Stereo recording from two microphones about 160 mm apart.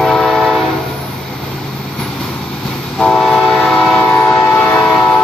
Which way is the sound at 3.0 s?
5° left (ahead or behind).